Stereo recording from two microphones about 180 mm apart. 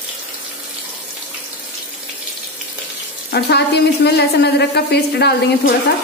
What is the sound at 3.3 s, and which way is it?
A woman's voice, 70° left (ahead or behind).